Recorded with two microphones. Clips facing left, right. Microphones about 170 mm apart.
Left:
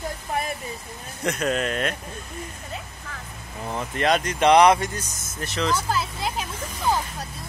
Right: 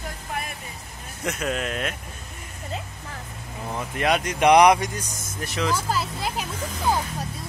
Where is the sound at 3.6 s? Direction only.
5° right (ahead or behind).